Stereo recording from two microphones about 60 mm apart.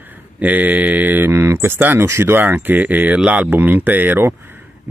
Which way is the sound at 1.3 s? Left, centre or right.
Right.